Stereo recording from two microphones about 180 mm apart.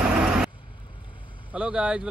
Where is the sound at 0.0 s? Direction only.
5° right (ahead or behind).